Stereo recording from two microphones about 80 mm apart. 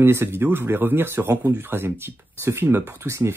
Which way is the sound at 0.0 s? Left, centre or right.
Right.